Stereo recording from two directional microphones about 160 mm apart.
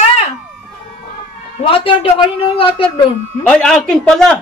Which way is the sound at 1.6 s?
35° left (ahead or behind).